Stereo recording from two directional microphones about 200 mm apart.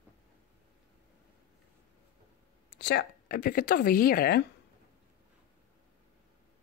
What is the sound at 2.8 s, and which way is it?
Speech, 50° left (ahead or behind).